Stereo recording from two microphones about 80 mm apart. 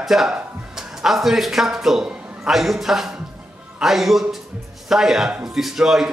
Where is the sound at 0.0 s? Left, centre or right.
Centre.